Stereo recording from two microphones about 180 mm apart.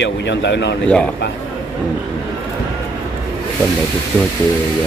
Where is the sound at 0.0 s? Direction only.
75° left (ahead or behind).